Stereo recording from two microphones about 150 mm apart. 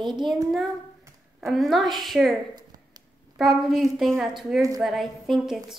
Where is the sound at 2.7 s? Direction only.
25° right (ahead or behind).